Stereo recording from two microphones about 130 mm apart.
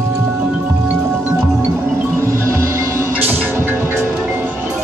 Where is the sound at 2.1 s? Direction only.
20° right (ahead or behind).